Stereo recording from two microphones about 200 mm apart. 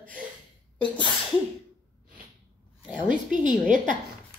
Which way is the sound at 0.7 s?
25° left (ahead or behind).